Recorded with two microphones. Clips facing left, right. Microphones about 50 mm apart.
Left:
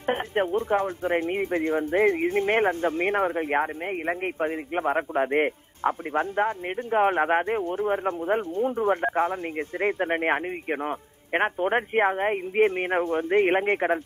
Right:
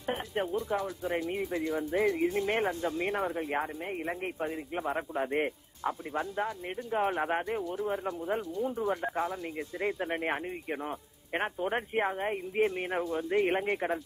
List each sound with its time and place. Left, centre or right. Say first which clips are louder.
0.0 s speech: left 7 dB; left